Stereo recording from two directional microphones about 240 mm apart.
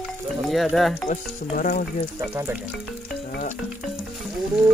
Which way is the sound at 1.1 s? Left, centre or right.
Left.